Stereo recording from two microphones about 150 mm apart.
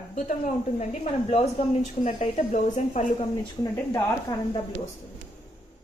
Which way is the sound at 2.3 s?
60° left (ahead or behind).